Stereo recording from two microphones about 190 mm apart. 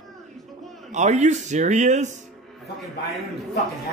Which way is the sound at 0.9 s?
40° right (ahead or behind).